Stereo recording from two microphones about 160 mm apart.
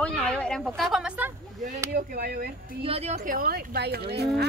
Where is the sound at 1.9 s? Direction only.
65° right (ahead or behind).